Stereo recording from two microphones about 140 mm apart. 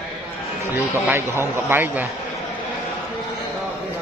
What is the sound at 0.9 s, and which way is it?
A man's voice, 15° right (ahead or behind).